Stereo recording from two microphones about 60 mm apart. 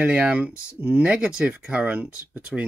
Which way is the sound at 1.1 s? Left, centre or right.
Centre.